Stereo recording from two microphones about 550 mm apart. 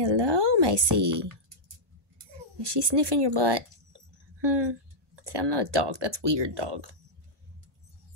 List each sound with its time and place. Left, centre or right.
0.0 s a woman's voice: right
2.5 s a woman's voice: right